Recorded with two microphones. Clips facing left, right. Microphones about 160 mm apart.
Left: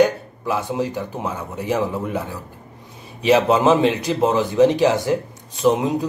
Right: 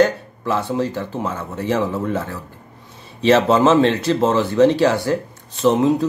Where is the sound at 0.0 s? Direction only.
15° left (ahead or behind).